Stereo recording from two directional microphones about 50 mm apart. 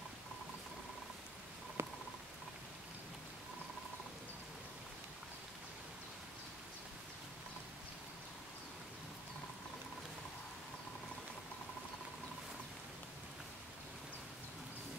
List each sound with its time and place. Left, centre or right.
1.8 s patter: right